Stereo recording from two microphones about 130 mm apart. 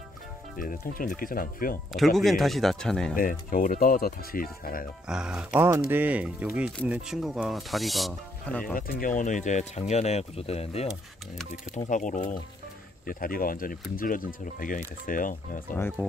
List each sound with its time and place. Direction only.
0.6 s speech: 90° left
1.9 s speech: centre (ahead or behind)
3.2 s speech: 90° left
5.0 s speech: 5° right (ahead or behind); by 8.7 s 10° left (ahead or behind)
9.0 s speech: 80° left; by 10.9 s 50° left (ahead or behind)
11.7 s speech: 70° left (ahead or behind)
13.0 s speech: 90° left
16.0 s speech: 15° right (ahead or behind)